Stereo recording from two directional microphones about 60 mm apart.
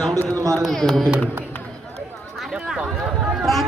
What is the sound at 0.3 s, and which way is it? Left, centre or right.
Speech, right.